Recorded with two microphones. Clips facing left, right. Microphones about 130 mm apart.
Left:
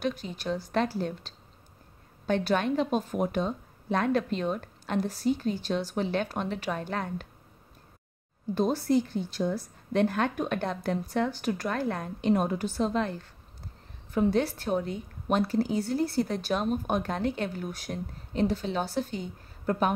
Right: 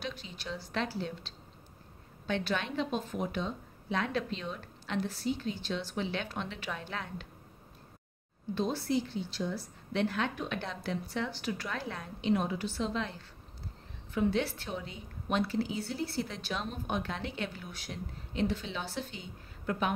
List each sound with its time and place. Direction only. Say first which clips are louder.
0.0 s a woman's voice: left 9 dB; 45° left (ahead or behind)
8.5 s a woman's voice: left 6 dB; 45° left (ahead or behind)